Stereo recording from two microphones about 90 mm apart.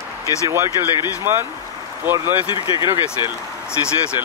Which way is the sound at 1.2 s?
30° right (ahead or behind).